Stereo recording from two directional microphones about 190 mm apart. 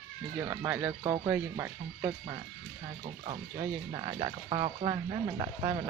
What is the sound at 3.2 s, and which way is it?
Speech, 30° right (ahead or behind).